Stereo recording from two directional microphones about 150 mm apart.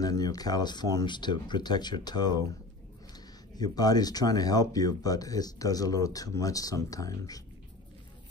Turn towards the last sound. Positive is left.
turn(degrees=25)  # may be behind; listen again after turning